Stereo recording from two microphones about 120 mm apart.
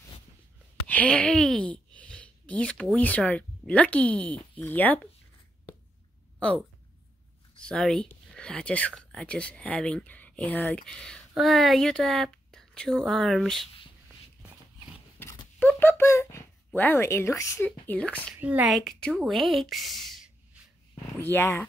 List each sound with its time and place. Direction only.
0.8 s speech: 10° left (ahead or behind)
7.6 s a woman's voice: 5° left (ahead or behind)
15.6 s speech: 15° left (ahead or behind)
17.6 s speech: 10° left (ahead or behind)
18.4 s speech: 10° right (ahead or behind)
18.7 s a woman's voice: 5° left (ahead or behind)
21.2 s speech: 15° left (ahead or behind)